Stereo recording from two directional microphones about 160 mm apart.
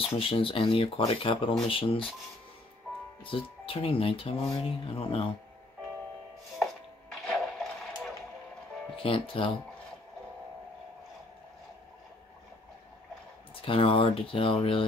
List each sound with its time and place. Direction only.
0.1 s speech: 35° left (ahead or behind)
3.3 s speech: 35° left (ahead or behind)
6.6 s a sound: centre (ahead or behind)
8.9 s speech: 35° left (ahead or behind)
13.6 s speech: 35° left (ahead or behind)